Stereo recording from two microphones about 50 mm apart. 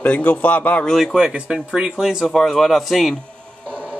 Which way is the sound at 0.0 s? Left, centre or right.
Left.